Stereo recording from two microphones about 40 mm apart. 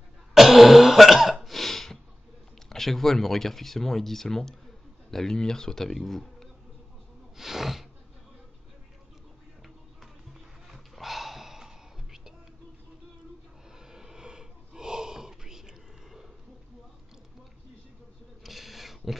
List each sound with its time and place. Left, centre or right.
0.3 s throat clearing: centre
2.7 s speech: centre
7.3 s snort: centre
10.7 s whispering: centre
13.9 s gasp: centre
18.4 s a sound: centre